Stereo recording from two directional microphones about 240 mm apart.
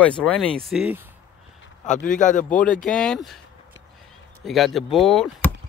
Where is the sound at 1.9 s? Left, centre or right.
Left.